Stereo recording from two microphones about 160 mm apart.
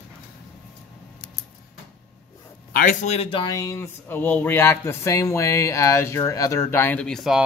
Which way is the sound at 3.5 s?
20° left (ahead or behind).